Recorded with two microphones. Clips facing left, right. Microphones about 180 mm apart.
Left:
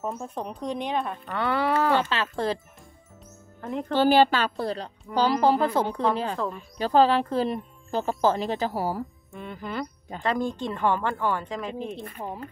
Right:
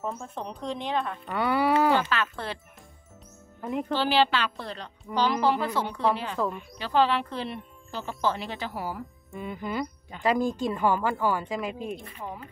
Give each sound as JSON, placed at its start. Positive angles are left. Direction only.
{"t": 0.2, "sound": "a woman's voice", "side_deg": 15}
{"t": 1.2, "sound": "speech", "side_deg": -15}
{"t": 2.0, "sound": "a woman's voice", "side_deg": 25}
{"t": 2.2, "sound": "speech", "side_deg": 40}
{"t": 3.9, "sound": "speech", "side_deg": 45}
{"t": 6.3, "sound": "speech", "side_deg": 0}
{"t": 6.8, "sound": "speech", "side_deg": 40}
{"t": 9.3, "sound": "speech", "side_deg": -5}
{"t": 12.1, "sound": "speech", "side_deg": 35}